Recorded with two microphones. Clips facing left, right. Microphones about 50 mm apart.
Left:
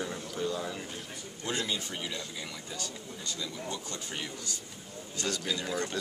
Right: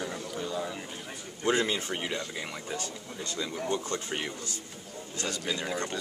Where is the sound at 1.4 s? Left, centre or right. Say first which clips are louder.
Right 7 dB; right.